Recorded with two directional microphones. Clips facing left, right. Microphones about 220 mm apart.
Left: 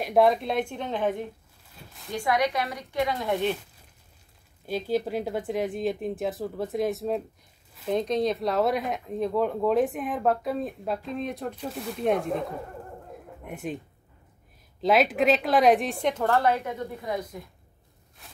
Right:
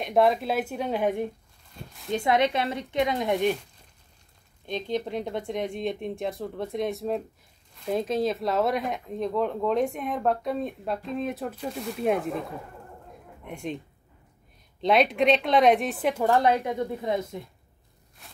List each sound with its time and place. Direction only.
0.0 s speech: centre (ahead or behind)
2.0 s speech: 25° right (ahead or behind)
4.6 s speech: 5° left (ahead or behind)
13.5 s speech: 5° left (ahead or behind)
14.8 s speech: centre (ahead or behind); by 17.4 s 25° right (ahead or behind)